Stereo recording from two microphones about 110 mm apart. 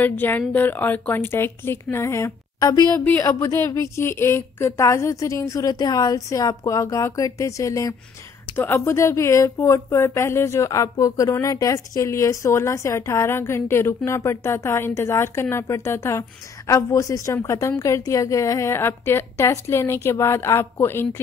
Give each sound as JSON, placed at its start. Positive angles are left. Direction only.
{"t": 0.0, "sound": "speech", "side_deg": 15}